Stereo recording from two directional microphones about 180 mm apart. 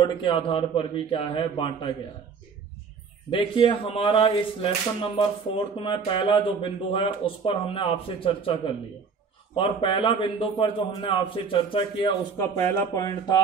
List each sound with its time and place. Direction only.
0.0 s speech: 30° left (ahead or behind)
3.3 s speech: 30° left (ahead or behind)
12.4 s speech: 15° left (ahead or behind)